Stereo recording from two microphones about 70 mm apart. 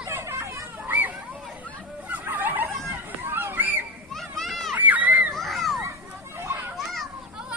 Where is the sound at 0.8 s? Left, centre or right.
Right.